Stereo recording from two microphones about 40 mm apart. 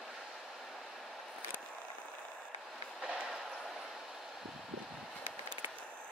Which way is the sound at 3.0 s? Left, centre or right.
Centre.